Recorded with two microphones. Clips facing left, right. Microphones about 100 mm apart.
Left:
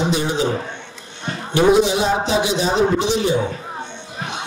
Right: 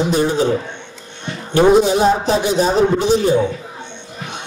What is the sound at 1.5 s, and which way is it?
A man's voice, 45° right (ahead or behind).